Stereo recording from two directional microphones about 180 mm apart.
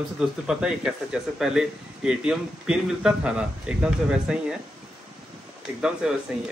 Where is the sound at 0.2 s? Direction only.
5° right (ahead or behind).